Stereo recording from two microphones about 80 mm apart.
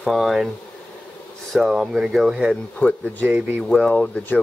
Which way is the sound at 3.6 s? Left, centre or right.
Centre.